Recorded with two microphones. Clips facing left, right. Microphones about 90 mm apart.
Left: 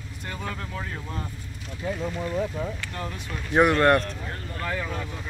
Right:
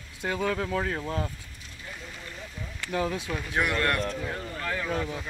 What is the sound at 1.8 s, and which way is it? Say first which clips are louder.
Speech: left 13 dB; 85° left.